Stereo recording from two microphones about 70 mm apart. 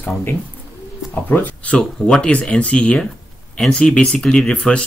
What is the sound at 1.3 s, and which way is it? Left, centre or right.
Speech, left.